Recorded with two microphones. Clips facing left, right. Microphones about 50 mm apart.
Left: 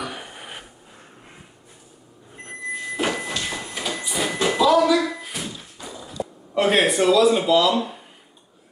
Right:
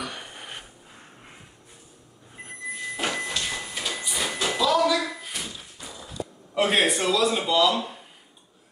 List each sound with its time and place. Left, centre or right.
0.0 s a sound: centre
2.3 s sliding door: centre
6.1 s speech: centre